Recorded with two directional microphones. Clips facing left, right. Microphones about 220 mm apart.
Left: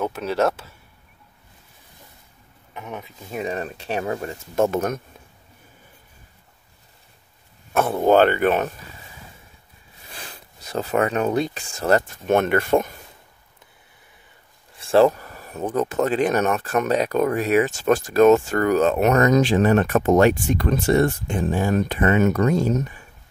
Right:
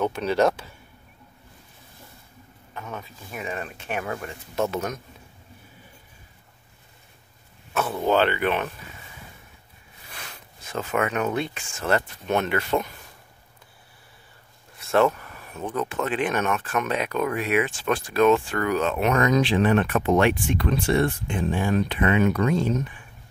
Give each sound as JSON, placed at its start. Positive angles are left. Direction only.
{"t": 0.0, "sound": "speech", "side_deg": 5}
{"t": 2.7, "sound": "speech", "side_deg": 15}
{"t": 3.3, "sound": "speech", "side_deg": 35}
{"t": 7.7, "sound": "speech", "side_deg": 50}
{"t": 10.0, "sound": "speech", "side_deg": 30}
{"t": 14.8, "sound": "speech", "side_deg": 30}